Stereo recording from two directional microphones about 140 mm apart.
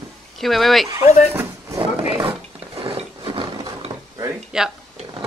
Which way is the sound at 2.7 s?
45° right (ahead or behind).